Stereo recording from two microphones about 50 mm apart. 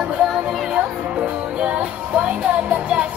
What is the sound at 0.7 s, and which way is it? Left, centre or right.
Music, right.